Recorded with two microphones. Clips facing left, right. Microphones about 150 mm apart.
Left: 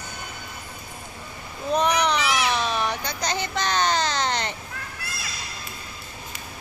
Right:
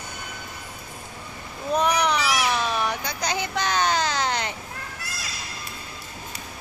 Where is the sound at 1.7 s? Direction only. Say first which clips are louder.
Even; 10° right (ahead or behind).